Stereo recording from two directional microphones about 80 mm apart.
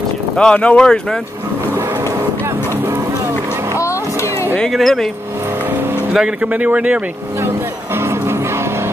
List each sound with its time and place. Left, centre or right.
0.4 s speech: centre
3.7 s a sound: left
4.6 s speech: centre
6.1 s speech: centre
7.4 s music: right